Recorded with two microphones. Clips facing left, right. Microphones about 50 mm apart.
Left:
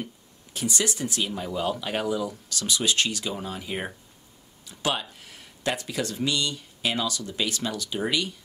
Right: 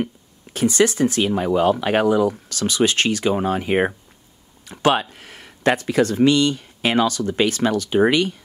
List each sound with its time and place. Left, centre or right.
0.0 s speech: right